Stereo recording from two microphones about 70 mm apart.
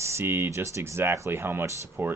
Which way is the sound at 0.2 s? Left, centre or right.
Right.